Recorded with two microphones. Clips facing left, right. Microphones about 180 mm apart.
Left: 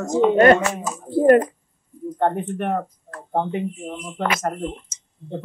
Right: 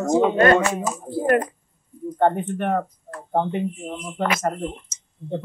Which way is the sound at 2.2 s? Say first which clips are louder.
Right 2 dB; centre (ahead or behind).